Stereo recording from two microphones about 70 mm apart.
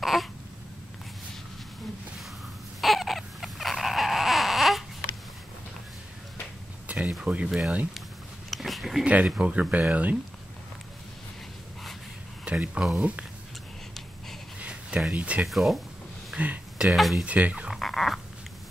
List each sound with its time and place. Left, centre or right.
0.0 s babbling: centre
2.8 s baby cry: centre
6.9 s a sound: centre
7.2 s speech: centre
8.5 s a sound: centre
9.0 s speech: centre
12.4 s speech: centre
14.6 s a sound: centre
15.1 s speech: centre
15.4 s speech: centre
16.3 s a sound: centre
16.7 s speech: centre
17.2 s speech: centre
17.6 s dog: centre